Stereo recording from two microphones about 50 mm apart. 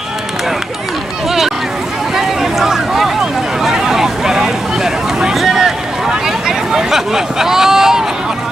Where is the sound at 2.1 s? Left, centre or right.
Centre.